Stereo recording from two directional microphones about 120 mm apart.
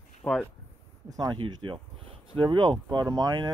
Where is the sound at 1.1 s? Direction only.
35° right (ahead or behind).